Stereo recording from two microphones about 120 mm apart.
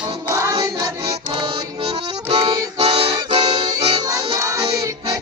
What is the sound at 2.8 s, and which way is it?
Music, 50° right (ahead or behind).